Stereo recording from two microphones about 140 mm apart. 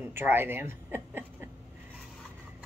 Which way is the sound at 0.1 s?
15° right (ahead or behind).